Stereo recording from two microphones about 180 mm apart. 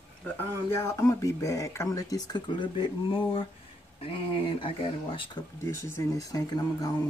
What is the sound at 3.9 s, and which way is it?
Speech, 30° left (ahead or behind).